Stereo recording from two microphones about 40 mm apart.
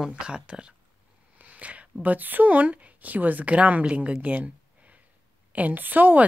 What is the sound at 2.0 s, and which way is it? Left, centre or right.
A woman's voice, right.